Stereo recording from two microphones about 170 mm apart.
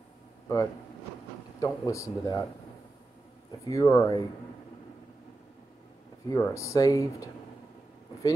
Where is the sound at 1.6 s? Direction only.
20° left (ahead or behind).